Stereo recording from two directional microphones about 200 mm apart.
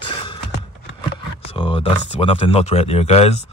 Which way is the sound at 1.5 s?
25° left (ahead or behind).